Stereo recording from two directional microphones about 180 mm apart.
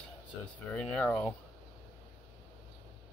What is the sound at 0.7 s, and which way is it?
Speech, 5° left (ahead or behind).